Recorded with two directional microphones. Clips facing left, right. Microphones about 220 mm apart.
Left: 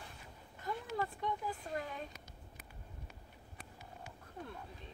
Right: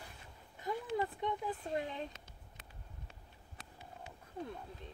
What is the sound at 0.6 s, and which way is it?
Speech, 20° right (ahead or behind).